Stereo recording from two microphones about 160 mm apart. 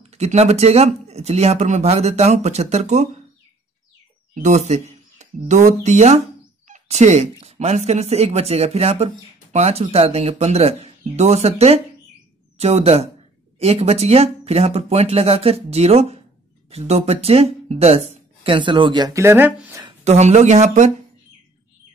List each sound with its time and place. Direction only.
0.1 s speech: 45° right (ahead or behind)
4.4 s speech: 45° right (ahead or behind); by 19.8 s 15° right (ahead or behind)
20.1 s speech: 45° right (ahead or behind)